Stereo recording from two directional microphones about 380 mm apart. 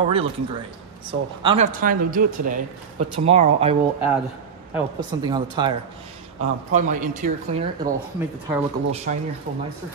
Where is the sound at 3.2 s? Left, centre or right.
Centre.